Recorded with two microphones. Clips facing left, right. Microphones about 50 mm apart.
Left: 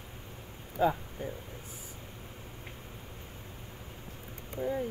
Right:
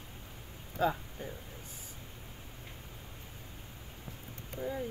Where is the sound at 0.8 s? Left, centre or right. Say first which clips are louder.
Left 3 dB; left.